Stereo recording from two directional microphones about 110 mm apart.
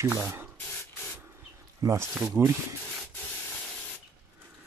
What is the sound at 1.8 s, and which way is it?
Speech, 25° right (ahead or behind).